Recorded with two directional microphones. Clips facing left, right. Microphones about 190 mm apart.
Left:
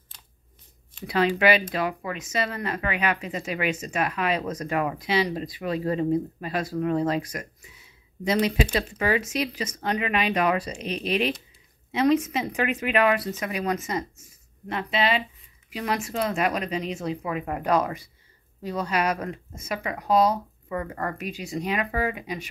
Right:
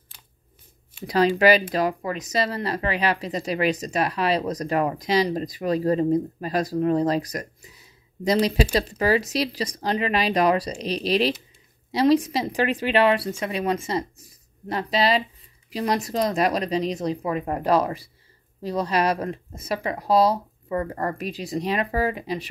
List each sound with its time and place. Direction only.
1.0 s speech: 40° right (ahead or behind)